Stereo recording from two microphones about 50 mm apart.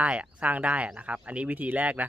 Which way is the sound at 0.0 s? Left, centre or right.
Right.